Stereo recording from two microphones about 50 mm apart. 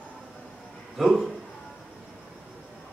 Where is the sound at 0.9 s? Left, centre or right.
Centre.